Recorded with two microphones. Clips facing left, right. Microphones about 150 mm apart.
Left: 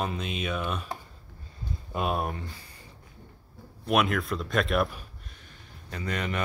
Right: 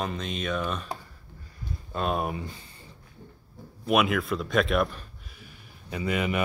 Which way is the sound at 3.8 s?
Centre (ahead or behind).